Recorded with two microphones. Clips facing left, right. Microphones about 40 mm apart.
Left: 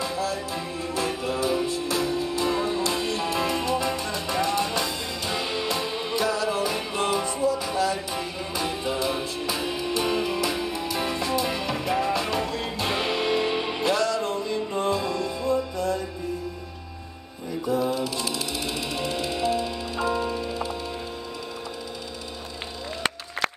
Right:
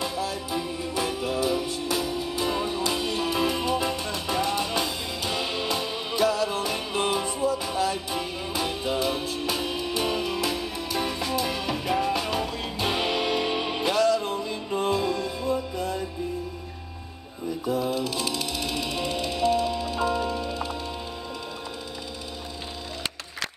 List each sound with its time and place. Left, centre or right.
0.0 s music: centre
1.3 s music: centre
2.0 s music: centre
12.7 s music: centre
14.7 s music: centre
17.8 s music: centre